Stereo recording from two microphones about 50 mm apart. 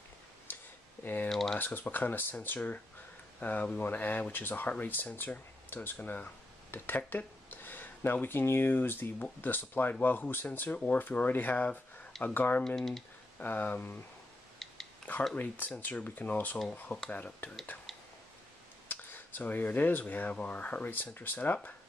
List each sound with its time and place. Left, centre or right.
0.5 s tick-tock: left
1.0 s typing: left
1.6 s speech: left
12.6 s speech: centre
13.4 s speech: left
14.6 s a sound: centre
15.3 s speech: left
17.9 s a sound: centre
18.9 s speech: left